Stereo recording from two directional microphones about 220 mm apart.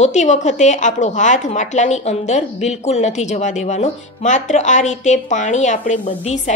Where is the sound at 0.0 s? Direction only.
35° left (ahead or behind).